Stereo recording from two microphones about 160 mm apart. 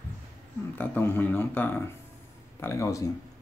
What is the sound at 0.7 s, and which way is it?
Speech, 10° left (ahead or behind).